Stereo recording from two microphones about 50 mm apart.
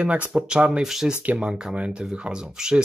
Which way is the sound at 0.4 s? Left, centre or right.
Centre.